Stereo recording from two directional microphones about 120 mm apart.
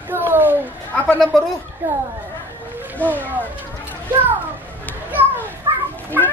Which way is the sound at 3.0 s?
15° left (ahead or behind).